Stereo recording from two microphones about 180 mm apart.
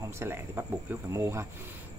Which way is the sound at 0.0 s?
15° right (ahead or behind).